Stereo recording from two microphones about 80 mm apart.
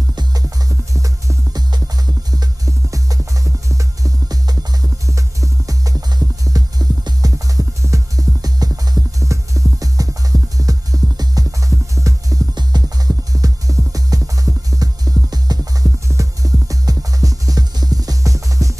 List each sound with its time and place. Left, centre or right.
0.1 s music: right
0.9 s music: right
1.7 s music: right
12.5 s music: right